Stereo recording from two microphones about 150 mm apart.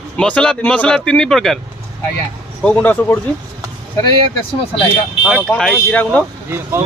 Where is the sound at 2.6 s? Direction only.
5° left (ahead or behind).